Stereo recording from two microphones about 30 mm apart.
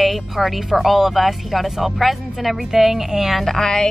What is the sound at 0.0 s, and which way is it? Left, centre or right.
A woman's voice, centre.